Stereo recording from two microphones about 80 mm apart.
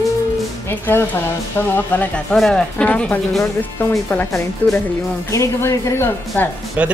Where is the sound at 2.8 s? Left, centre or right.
Centre.